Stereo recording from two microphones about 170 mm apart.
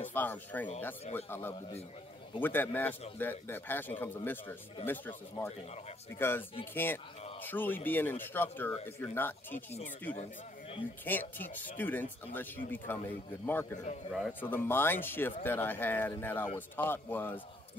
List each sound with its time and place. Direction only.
0.0 s speech: 10° left (ahead or behind)
11.1 s speech: 10° left (ahead or behind)